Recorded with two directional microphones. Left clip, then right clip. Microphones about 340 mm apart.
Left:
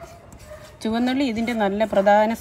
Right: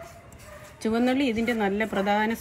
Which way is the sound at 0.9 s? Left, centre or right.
Centre.